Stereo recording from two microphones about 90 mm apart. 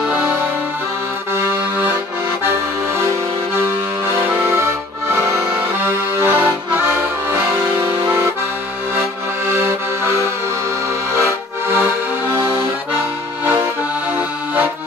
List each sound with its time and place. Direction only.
1.3 s accordion: 25° right (ahead or behind)
4.4 s accordion: 30° right (ahead or behind)
5.9 s accordion: 25° right (ahead or behind)
9.5 s music: 30° right (ahead or behind)
11.1 s accordion: 30° right (ahead or behind)